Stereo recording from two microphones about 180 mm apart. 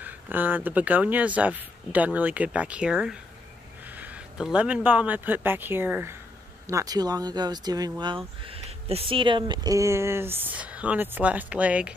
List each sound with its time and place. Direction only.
0.0 s speech: 10° right (ahead or behind)
8.4 s speech: 30° right (ahead or behind); by 11.9 s 5° right (ahead or behind)